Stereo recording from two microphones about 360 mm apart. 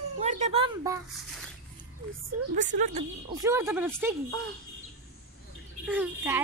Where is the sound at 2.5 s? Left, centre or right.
Centre.